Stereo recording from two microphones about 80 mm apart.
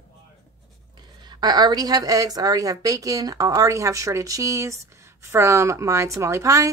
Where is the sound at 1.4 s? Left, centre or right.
Right.